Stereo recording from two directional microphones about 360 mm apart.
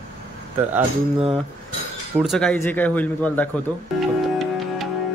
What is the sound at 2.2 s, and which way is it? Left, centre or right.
Music, centre.